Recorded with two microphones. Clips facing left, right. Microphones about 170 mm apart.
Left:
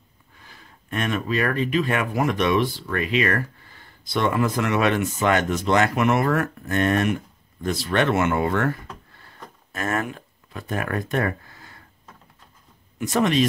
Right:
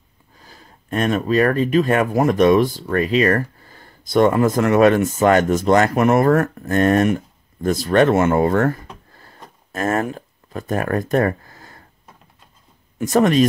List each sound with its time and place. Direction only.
0.4 s speech: 35° right (ahead or behind)
13.0 s speech: 45° right (ahead or behind)